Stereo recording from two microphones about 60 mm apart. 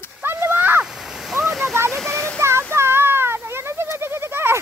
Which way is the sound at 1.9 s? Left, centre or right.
Centre.